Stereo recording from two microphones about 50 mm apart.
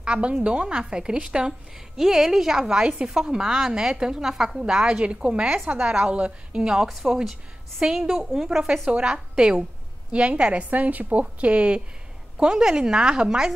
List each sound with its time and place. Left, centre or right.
0.0 s a woman's voice: right
6.7 s a woman's voice: centre
7.8 s a woman's voice: centre
12.4 s a woman's voice: centre